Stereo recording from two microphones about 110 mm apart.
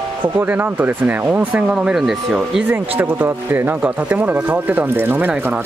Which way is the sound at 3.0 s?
15° right (ahead or behind).